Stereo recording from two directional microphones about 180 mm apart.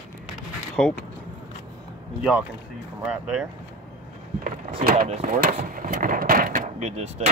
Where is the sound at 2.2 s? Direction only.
5° right (ahead or behind).